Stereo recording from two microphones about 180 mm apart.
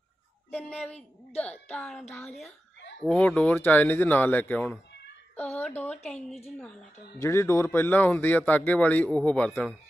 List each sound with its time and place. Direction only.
0.5 s a woman's voice: 10° left (ahead or behind)
6.1 s a woman's voice: 35° left (ahead or behind)
7.2 s speech: 15° left (ahead or behind)